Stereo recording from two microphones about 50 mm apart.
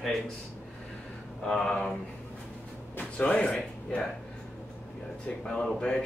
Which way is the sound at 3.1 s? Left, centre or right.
Left.